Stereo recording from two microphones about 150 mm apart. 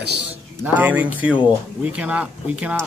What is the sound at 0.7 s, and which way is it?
Speech, 10° right (ahead or behind).